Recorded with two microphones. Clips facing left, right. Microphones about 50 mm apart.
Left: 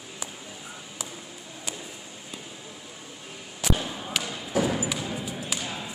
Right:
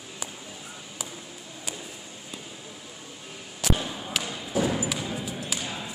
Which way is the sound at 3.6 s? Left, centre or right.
Centre.